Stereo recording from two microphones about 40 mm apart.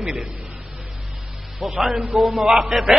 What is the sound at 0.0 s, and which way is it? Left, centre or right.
Speech, centre.